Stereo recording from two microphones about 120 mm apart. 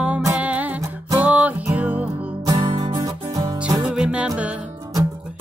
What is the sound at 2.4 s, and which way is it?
Music, 40° right (ahead or behind).